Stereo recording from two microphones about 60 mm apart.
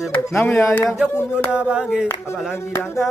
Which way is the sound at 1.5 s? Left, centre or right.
Centre.